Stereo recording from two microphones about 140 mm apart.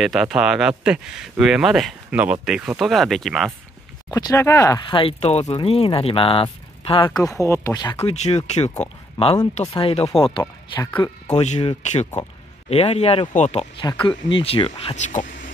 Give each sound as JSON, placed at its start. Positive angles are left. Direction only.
{"t": 0.0, "sound": "speech", "side_deg": -5}
{"t": 4.1, "sound": "speech", "side_deg": 25}
{"t": 4.8, "sound": "speech", "side_deg": 40}
{"t": 7.2, "sound": "speech", "side_deg": 25}
{"t": 8.0, "sound": "speech", "side_deg": 50}
{"t": 11.3, "sound": "speech", "side_deg": 50}
{"t": 13.8, "sound": "speech", "side_deg": 35}
{"t": 15.0, "sound": "speech", "side_deg": 65}